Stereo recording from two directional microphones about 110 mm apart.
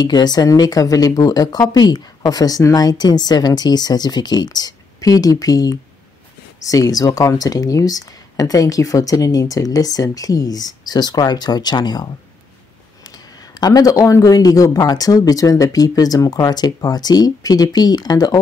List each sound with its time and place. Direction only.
0.0 s speech: 40° left (ahead or behind)
13.6 s speech: 35° left (ahead or behind)